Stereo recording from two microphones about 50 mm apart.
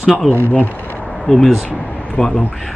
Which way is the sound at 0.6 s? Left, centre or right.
Left.